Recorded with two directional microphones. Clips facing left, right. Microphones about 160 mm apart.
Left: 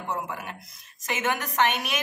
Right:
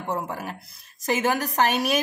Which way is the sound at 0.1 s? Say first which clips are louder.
Right 4 dB; 35° right (ahead or behind).